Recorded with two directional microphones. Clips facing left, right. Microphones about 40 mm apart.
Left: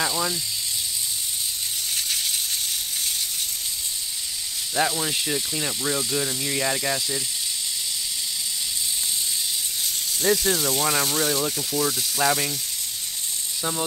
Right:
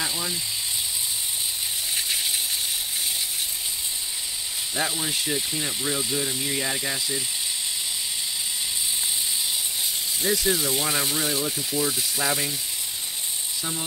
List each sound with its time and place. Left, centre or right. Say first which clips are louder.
0.0 s speech: left 4 dB; centre
2.0 s a sound: right 1 dB; centre
4.7 s speech: left 4 dB; centre
10.2 s speech: left 2 dB; centre
13.6 s speech: left 6 dB; centre